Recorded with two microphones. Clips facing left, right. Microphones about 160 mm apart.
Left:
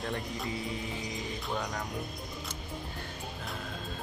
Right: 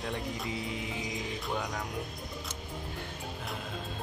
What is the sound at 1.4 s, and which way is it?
Speech, 5° right (ahead or behind).